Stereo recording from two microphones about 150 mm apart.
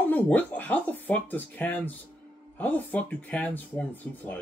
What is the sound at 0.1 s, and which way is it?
Speech, 10° left (ahead or behind).